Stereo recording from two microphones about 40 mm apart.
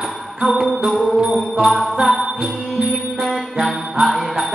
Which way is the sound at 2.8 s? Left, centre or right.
Centre.